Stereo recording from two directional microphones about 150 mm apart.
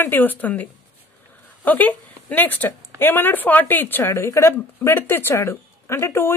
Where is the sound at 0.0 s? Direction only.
15° left (ahead or behind).